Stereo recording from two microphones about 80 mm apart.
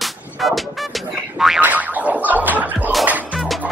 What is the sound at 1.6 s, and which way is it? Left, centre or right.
Music, right.